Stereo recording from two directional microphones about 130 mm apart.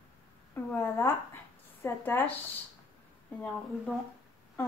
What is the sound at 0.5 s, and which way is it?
Speech, 15° left (ahead or behind).